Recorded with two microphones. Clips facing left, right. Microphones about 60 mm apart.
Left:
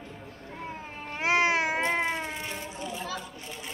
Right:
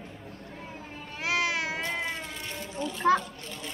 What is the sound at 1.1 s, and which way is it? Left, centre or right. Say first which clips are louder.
Cat: left 4 dB; left.